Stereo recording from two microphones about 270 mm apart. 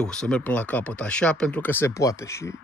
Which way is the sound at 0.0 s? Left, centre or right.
Centre.